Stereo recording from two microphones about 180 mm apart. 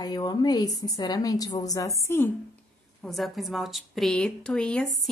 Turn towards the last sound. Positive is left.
turn(degrees=5)  # may be behind; listen again after turning